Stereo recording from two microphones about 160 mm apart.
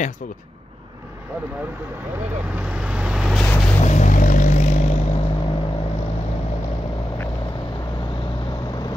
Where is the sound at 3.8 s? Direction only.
45° left (ahead or behind).